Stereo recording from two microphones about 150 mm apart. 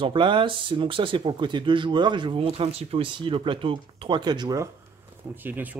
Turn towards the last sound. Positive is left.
turn(degrees=-10)  # may be behind; listen again after turning